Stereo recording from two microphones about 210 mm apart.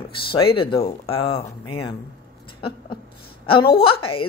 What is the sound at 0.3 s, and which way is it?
A woman's voice, 25° left (ahead or behind).